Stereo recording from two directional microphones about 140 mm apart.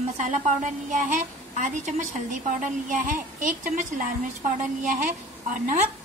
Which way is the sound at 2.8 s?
65° right (ahead or behind).